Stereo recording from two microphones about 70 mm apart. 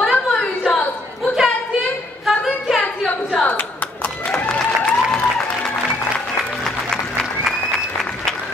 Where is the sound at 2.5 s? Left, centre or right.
Centre.